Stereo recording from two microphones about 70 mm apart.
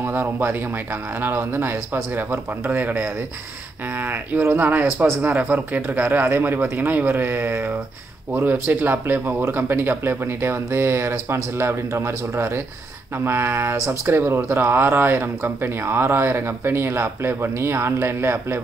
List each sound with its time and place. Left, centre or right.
0.0 s speech: right
5.2 s speech: right
8.5 s speech: right